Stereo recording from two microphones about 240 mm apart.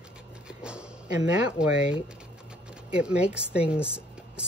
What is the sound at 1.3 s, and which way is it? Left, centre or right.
Speech, centre.